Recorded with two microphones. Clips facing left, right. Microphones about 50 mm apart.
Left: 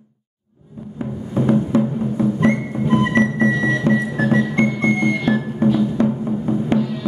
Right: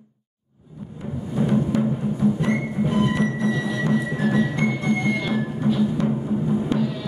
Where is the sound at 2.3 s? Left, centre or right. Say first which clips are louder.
Left 4 dB; left.